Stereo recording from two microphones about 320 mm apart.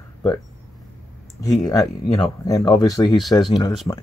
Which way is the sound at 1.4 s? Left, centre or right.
Centre.